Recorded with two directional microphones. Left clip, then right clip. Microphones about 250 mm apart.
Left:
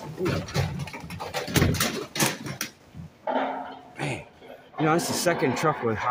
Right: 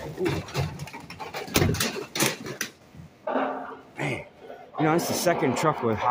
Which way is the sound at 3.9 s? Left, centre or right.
Centre.